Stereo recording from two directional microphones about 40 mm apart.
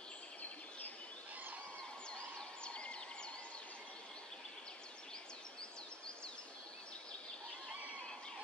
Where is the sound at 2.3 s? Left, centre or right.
Left.